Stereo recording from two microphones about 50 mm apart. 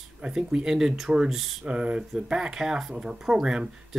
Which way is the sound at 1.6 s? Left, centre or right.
Right.